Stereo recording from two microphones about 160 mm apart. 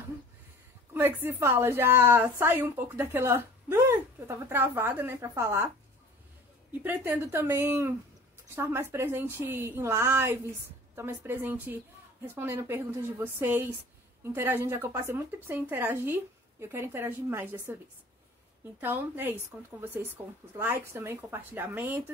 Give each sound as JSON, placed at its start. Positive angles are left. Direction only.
{"t": 0.9, "sound": "speech", "side_deg": -15}
{"t": 6.8, "sound": "speech", "side_deg": -10}
{"t": 18.8, "sound": "speech", "side_deg": -15}